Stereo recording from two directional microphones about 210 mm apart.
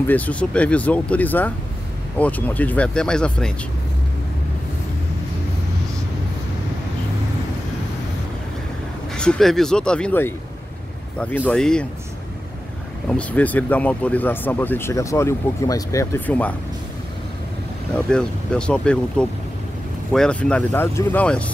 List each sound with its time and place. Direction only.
0.0 s speech: 5° left (ahead or behind)
9.1 s speech: 5° left (ahead or behind)
13.1 s speech: 5° left (ahead or behind)
17.9 s speech: 5° left (ahead or behind)